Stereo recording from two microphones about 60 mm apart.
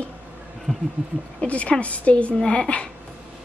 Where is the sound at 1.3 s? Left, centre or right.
Left.